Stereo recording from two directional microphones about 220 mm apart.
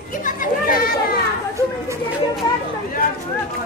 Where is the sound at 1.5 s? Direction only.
15° right (ahead or behind).